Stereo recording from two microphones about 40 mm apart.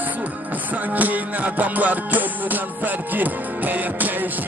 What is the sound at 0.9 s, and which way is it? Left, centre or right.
Music, right.